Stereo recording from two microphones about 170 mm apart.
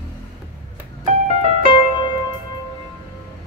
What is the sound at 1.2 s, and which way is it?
Music, 40° right (ahead or behind).